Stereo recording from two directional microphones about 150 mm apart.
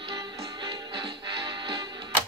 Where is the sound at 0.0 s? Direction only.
30° right (ahead or behind).